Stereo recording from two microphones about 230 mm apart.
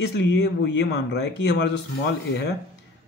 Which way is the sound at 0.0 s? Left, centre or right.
Left.